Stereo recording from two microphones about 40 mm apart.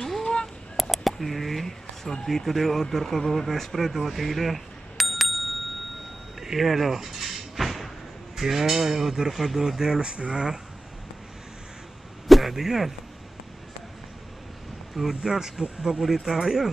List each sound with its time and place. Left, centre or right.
0.0 s a sound: centre
1.1 s speech: centre
6.4 s a sound: centre
8.4 s speech: centre
9.9 s speech: right
12.3 s speech: centre
15.0 s speech: centre